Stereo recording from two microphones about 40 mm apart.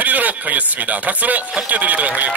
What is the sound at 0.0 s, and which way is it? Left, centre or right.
Speech, right.